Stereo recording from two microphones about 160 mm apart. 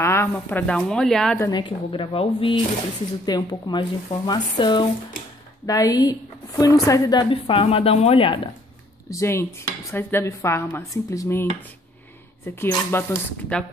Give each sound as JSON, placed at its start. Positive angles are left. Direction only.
{"t": 0.0, "sound": "speech", "side_deg": 15}
{"t": 1.5, "sound": "a woman's voice", "side_deg": 30}
{"t": 9.1, "sound": "speech", "side_deg": 15}
{"t": 12.5, "sound": "speech", "side_deg": 15}